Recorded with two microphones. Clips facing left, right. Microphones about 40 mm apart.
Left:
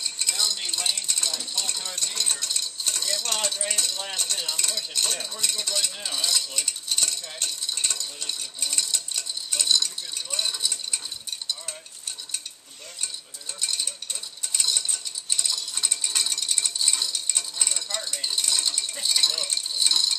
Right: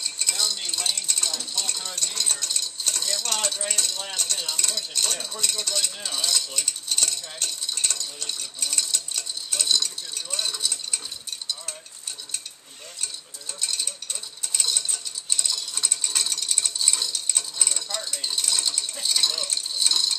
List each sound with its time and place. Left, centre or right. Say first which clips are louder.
0.0 s dishes: even; centre
13.6 s a sound: even; centre
14.5 s mechanisms: even; centre